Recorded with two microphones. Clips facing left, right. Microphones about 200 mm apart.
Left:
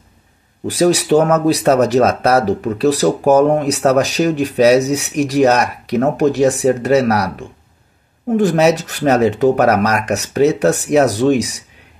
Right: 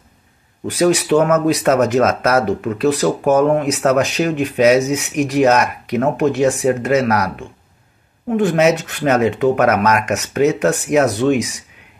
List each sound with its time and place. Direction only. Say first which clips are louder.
0.7 s speech: left 1 dB; 35° left (ahead or behind)